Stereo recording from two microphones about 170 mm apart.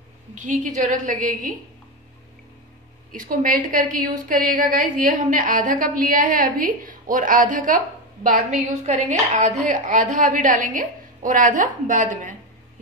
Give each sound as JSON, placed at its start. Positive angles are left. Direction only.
{"t": 0.5, "sound": "a woman's voice", "side_deg": -45}
{"t": 3.1, "sound": "a woman's voice", "side_deg": -55}